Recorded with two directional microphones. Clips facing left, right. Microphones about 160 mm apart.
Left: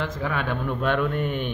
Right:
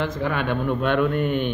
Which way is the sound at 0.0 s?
Centre (ahead or behind).